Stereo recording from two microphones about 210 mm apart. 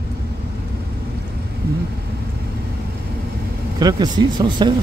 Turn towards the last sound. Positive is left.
turn(degrees=-20)  # may be behind; listen again after turning